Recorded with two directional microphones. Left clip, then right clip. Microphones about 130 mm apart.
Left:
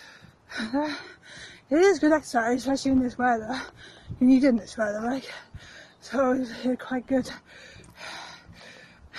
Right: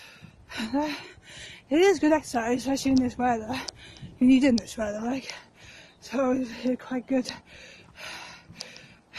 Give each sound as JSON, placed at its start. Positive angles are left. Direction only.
{"t": 0.0, "sound": "a sound", "side_deg": -20}
{"t": 1.3, "sound": "speech", "side_deg": -15}
{"t": 7.3, "sound": "dog", "side_deg": -20}